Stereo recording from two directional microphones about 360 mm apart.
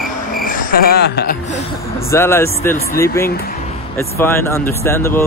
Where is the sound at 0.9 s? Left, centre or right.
Left.